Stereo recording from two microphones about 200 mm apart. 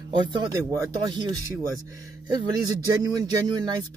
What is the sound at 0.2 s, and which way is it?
Speech, 20° right (ahead or behind).